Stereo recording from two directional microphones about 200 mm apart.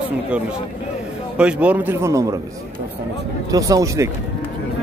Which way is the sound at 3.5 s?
15° right (ahead or behind).